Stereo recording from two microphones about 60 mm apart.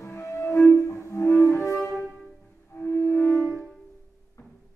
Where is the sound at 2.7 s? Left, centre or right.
Left.